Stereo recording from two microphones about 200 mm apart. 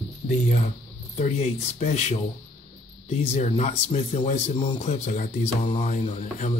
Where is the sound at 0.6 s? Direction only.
35° left (ahead or behind).